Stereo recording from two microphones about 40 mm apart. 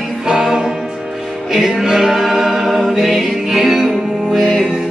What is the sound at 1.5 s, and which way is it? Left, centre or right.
A capella, centre.